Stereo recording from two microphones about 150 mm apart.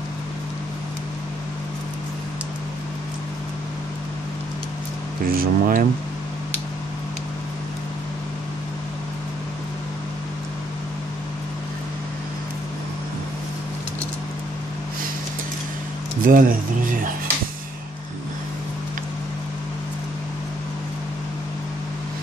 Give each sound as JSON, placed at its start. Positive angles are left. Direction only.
{"t": 5.2, "sound": "speech", "side_deg": -75}
{"t": 16.3, "sound": "speech", "side_deg": -65}